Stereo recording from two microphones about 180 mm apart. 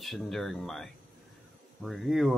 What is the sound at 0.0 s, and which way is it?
Speech, centre (ahead or behind).